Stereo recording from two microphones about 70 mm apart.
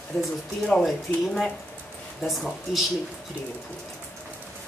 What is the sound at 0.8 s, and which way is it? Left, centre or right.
A woman's voice, centre.